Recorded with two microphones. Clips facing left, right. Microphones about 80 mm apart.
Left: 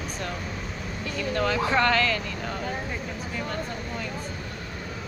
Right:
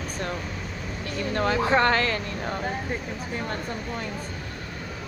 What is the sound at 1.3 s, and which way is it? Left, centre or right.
Speech, right.